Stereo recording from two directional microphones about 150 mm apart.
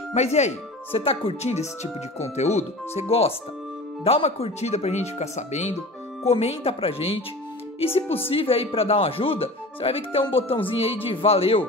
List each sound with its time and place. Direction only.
0.1 s speech: 50° left (ahead or behind)